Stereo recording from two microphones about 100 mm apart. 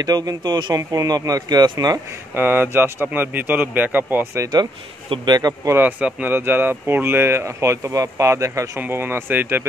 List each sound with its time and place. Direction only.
0.0 s a man's voice: 40° right (ahead or behind)
2.3 s speech: 20° right (ahead or behind)
5.1 s speech: 50° right (ahead or behind)
5.7 s speech: 20° right (ahead or behind)